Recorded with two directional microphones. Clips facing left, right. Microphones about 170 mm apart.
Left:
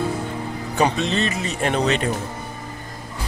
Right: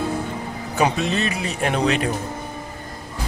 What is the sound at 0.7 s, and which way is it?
Speech, 5° right (ahead or behind).